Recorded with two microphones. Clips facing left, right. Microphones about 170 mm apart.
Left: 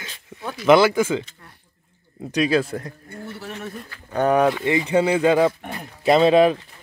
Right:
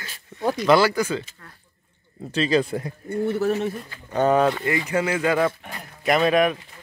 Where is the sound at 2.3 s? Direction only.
15° left (ahead or behind).